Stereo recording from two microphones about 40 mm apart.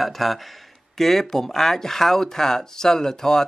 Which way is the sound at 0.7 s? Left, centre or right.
Centre.